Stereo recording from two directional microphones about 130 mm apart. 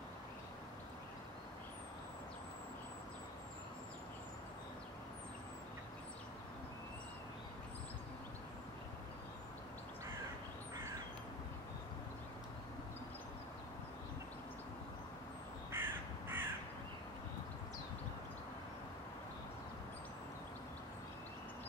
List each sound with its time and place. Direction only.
15.7 s crow: 15° right (ahead or behind)